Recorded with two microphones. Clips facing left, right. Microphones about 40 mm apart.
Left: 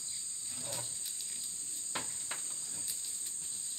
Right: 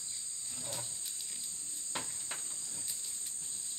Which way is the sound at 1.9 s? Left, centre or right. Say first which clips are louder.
Left 1 dB; centre.